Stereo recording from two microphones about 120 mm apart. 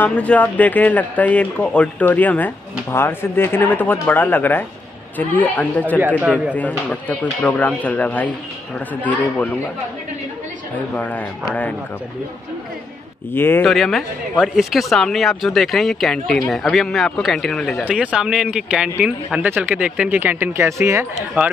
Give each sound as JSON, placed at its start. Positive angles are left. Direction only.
{"t": 0.0, "sound": "speech", "side_deg": 10}
{"t": 5.9, "sound": "speech", "side_deg": -15}
{"t": 6.5, "sound": "speech", "side_deg": 10}
{"t": 11.0, "sound": "speech", "side_deg": 15}
{"t": 13.3, "sound": "speech", "side_deg": 15}
{"t": 13.7, "sound": "speech", "side_deg": 0}
{"t": 17.8, "sound": "speech", "side_deg": -10}